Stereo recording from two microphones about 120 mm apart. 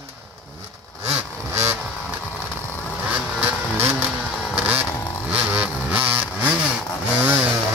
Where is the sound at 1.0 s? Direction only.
20° right (ahead or behind).